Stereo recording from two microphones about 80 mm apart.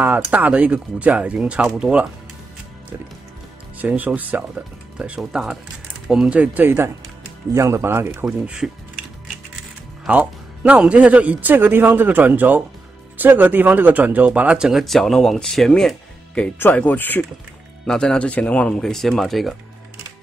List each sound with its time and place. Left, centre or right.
0.3 s speech: centre
3.7 s a man's voice: right
7.5 s speech: right
8.5 s speech: centre
10.0 s a man's voice: centre
16.5 s speech: left
17.8 s speech: centre